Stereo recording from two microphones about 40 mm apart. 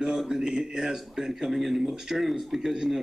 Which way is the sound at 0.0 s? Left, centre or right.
Centre.